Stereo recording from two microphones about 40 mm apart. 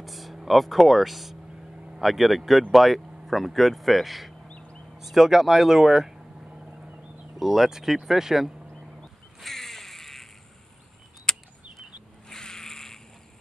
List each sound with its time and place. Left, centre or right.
0.0 s speech: centre
4.5 s bird: left
4.9 s speech: centre
6.5 s boat: right
7.3 s speech: centre
9.4 s a sound: centre
11.3 s a sound: centre